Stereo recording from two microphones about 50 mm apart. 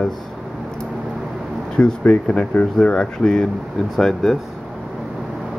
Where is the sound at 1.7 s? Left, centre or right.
Left.